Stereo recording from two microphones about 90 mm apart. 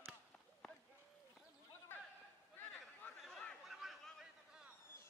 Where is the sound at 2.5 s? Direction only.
20° left (ahead or behind).